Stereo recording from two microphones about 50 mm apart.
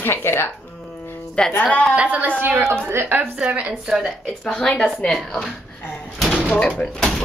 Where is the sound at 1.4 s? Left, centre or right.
Centre.